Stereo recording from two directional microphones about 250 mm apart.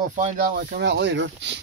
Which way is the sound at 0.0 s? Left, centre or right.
Right.